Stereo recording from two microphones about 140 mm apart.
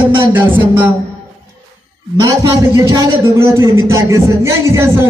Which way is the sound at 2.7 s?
20° right (ahead or behind).